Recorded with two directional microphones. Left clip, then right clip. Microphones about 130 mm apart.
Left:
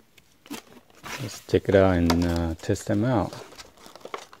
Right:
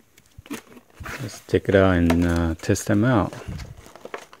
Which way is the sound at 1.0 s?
35° left (ahead or behind).